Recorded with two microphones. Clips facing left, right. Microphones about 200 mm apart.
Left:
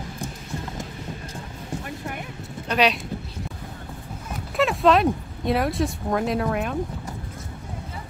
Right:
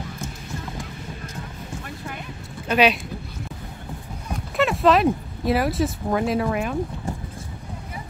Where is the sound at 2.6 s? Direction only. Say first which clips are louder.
Right 3 dB; 5° right (ahead or behind).